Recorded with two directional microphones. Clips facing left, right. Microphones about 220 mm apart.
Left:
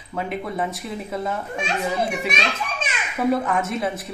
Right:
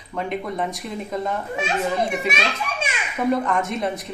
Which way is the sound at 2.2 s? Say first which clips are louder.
Right 1 dB; 5° right (ahead or behind).